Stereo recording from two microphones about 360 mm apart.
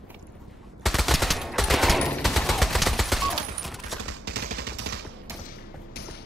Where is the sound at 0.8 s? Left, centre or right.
Centre.